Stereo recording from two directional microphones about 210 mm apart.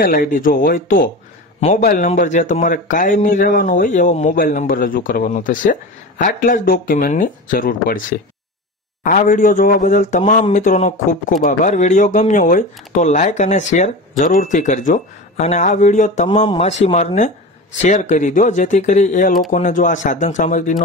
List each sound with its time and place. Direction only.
0.0 s a man's voice: 40° left (ahead or behind)